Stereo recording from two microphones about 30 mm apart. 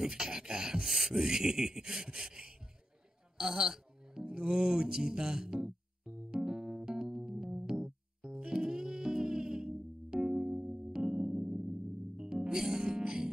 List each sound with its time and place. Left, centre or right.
0.0 s beatboxing: right
0.8 s beatboxing: centre
1.2 s speech: right
6.3 s keyboard: right
7.5 s music: right